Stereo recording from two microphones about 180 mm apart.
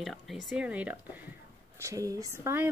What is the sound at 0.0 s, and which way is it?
Speech, centre (ahead or behind).